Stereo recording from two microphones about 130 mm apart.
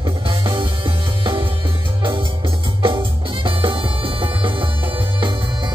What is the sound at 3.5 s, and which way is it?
Music, 40° right (ahead or behind).